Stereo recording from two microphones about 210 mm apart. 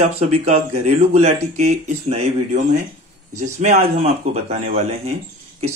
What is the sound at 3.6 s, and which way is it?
A man's voice, 35° right (ahead or behind).